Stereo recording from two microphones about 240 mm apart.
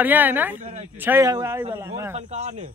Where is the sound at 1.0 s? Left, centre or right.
Centre.